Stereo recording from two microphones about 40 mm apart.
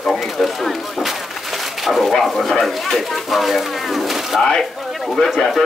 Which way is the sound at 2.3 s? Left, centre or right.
Centre.